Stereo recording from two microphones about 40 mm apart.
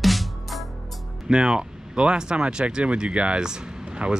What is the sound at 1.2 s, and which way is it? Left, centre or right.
Speech, right.